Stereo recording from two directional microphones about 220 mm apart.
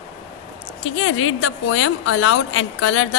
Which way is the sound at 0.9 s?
70° left (ahead or behind).